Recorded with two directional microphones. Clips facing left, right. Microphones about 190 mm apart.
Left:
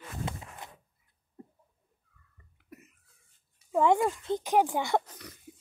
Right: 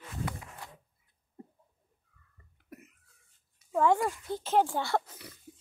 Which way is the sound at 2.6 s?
55° right (ahead or behind).